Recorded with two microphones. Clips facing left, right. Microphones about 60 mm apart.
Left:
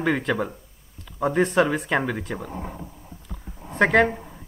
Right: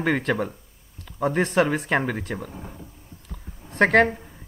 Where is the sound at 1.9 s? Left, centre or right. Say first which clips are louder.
Even; right.